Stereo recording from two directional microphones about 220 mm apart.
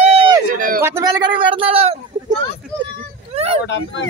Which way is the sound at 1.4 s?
25° right (ahead or behind).